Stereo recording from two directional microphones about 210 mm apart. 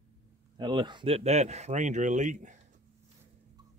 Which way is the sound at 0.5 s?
20° right (ahead or behind).